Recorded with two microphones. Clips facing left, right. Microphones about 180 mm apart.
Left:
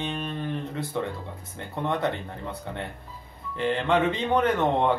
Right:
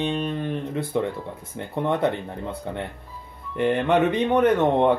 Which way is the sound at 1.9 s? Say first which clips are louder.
Right 4 dB; 20° right (ahead or behind).